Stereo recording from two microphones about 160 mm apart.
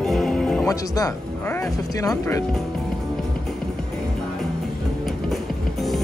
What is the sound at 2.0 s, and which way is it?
Speech, 20° left (ahead or behind).